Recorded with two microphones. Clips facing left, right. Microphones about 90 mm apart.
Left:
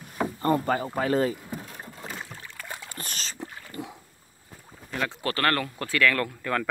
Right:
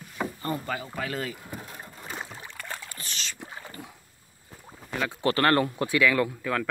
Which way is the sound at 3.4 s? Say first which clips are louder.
Left 2 dB; 25° right (ahead or behind).